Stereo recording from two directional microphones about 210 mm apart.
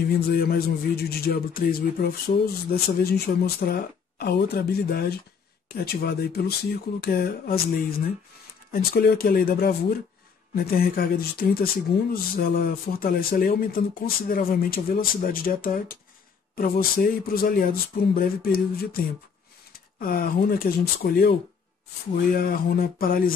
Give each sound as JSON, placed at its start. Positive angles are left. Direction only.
{"t": 0.3, "sound": "speech", "side_deg": 45}
{"t": 20.0, "sound": "speech", "side_deg": 45}
{"t": 22.3, "sound": "speech", "side_deg": 45}